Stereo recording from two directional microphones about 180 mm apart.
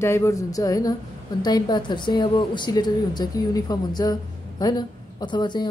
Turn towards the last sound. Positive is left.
turn(degrees=25)  # may be behind; listen again after turning